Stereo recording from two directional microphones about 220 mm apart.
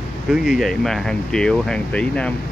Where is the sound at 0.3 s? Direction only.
Centre (ahead or behind).